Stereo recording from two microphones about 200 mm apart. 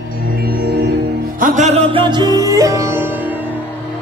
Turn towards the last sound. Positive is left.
turn(degrees=-15)  # may be behind; listen again after turning